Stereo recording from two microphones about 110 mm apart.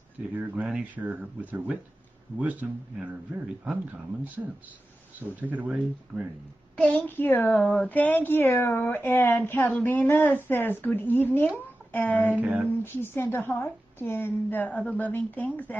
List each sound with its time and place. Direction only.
0.4 s speech: 10° right (ahead or behind)
5.4 s speech: 15° right (ahead or behind)
6.8 s a woman's voice: 10° left (ahead or behind)
12.4 s speech: 15° right (ahead or behind)
12.8 s a woman's voice: 20° left (ahead or behind)